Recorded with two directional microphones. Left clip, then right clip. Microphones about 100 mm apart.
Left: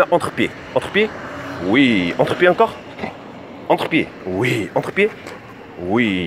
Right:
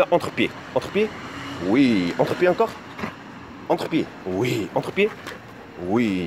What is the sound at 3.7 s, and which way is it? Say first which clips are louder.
Speech: left 6 dB; 10° right (ahead or behind).